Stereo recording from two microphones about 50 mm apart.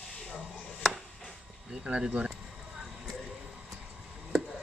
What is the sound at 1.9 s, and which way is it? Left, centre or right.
Speech, right.